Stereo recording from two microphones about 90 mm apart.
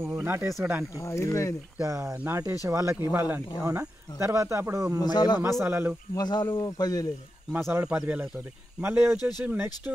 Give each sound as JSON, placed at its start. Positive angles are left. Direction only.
{"t": 0.0, "sound": "speech", "side_deg": -25}
{"t": 0.9, "sound": "speech", "side_deg": 30}
{"t": 1.8, "sound": "speech", "side_deg": -40}
{"t": 2.1, "sound": "speech", "side_deg": -25}
{"t": 2.6, "sound": "speech", "side_deg": -35}
{"t": 3.1, "sound": "speech", "side_deg": -20}
{"t": 3.5, "sound": "speech", "side_deg": -35}
{"t": 5.0, "sound": "speech", "side_deg": 50}
{"t": 5.4, "sound": "speech", "side_deg": -30}
{"t": 6.1, "sound": "speech", "side_deg": 50}
{"t": 7.5, "sound": "speech", "side_deg": -20}